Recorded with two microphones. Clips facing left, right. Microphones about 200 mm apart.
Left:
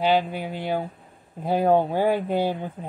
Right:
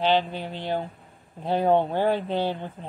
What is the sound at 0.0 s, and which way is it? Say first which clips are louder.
Speech: left 1 dB; 10° left (ahead or behind).